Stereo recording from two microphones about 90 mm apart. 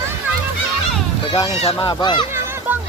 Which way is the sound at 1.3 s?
45° left (ahead or behind).